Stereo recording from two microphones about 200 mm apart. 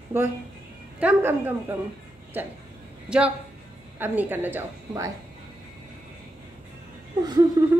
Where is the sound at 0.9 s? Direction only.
10° right (ahead or behind).